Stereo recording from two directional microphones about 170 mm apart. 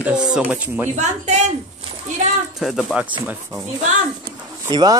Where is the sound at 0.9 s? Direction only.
45° right (ahead or behind).